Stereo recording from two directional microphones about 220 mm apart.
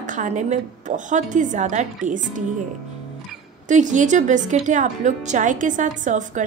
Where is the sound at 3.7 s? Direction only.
35° right (ahead or behind).